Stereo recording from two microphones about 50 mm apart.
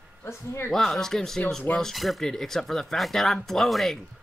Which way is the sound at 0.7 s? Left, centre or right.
Centre.